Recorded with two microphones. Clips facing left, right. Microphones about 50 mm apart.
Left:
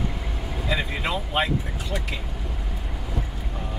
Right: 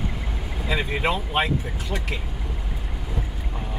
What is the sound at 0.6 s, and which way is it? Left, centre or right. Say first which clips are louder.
Vehicle: right 3 dB; centre.